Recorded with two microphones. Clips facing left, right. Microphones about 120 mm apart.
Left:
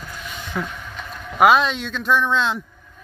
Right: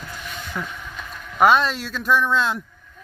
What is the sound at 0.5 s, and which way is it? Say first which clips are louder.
Vehicle: left 4 dB; 15° left (ahead or behind).